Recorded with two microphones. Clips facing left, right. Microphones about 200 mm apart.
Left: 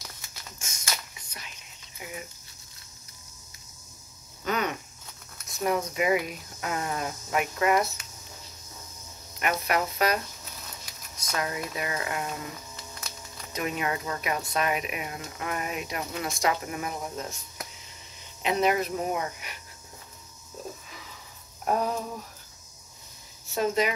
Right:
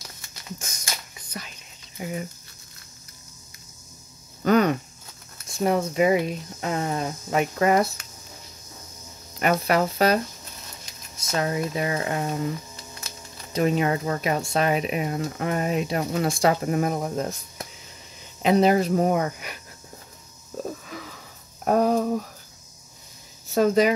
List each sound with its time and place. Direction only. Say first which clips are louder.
2.0 s speech: right 9 dB; 40° right (ahead or behind)
4.5 s a sound: right 10 dB; 40° right (ahead or behind)
5.5 s speech: right 5 dB; 30° right (ahead or behind)
9.4 s speech: right 6 dB; 35° right (ahead or behind)
13.5 s speech: right 8 dB; 35° right (ahead or behind)
16.0 s speech: right 8 dB; 45° right (ahead or behind)
16.3 s speech: right 5 dB; 30° right (ahead or behind); by 17.3 s 50° right (ahead or behind)
18.4 s speech: right 6 dB; 35° right (ahead or behind)
19.0 s speech: right 7 dB; 50° right (ahead or behind)
21.6 s a sound: right 8 dB; 55° right (ahead or behind)
23.5 s speech: right 7 dB; 45° right (ahead or behind)